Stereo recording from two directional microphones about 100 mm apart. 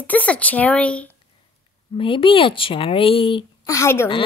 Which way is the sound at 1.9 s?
60° left (ahead or behind).